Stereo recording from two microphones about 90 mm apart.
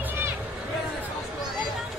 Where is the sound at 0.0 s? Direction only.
25° right (ahead or behind).